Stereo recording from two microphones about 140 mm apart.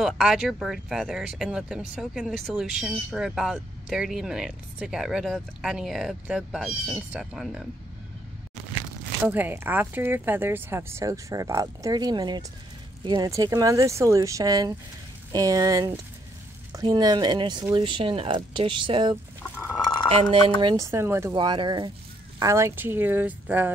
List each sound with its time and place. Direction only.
0.0 s speech: centre (ahead or behind)
9.2 s speech: 15° right (ahead or behind); by 19.1 s 35° right (ahead or behind)
20.6 s speech: 25° right (ahead or behind)
21.4 s speech: 30° right (ahead or behind)
22.4 s speech: 20° right (ahead or behind)